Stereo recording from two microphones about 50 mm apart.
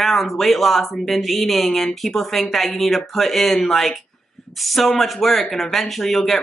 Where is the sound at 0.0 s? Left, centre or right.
Centre.